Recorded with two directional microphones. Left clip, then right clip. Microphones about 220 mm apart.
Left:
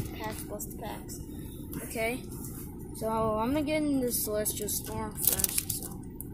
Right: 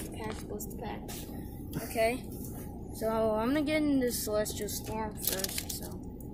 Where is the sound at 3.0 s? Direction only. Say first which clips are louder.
Even; 5° right (ahead or behind).